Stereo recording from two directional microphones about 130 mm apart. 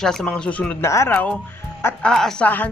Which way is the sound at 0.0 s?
5° left (ahead or behind).